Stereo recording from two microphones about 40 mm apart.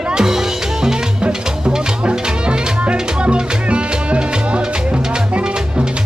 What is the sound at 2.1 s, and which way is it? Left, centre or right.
Music, right.